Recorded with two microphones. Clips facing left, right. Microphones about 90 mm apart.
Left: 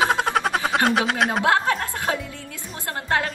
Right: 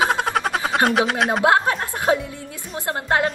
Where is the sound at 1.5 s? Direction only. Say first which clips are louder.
Right 2 dB; 25° right (ahead or behind).